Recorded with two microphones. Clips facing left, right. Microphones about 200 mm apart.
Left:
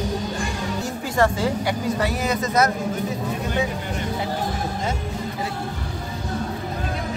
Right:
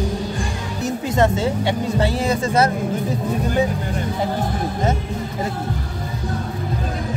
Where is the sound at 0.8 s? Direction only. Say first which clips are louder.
Right 4 dB; 20° right (ahead or behind).